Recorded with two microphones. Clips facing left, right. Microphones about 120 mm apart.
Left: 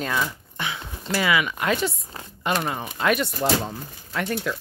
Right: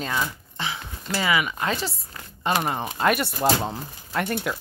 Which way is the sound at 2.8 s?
40° right (ahead or behind).